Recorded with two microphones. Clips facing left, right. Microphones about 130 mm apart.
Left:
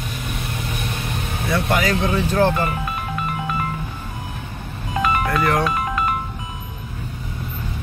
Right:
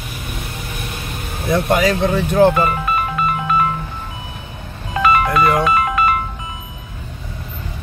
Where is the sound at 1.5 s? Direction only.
25° right (ahead or behind).